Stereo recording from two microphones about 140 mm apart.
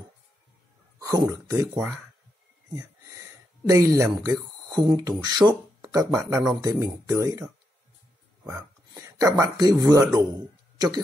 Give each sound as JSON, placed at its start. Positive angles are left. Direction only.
{"t": 0.9, "sound": "speech", "side_deg": -25}
{"t": 8.5, "sound": "speech", "side_deg": -20}